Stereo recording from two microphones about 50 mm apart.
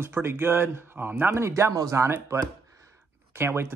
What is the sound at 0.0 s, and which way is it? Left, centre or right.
Speech, right.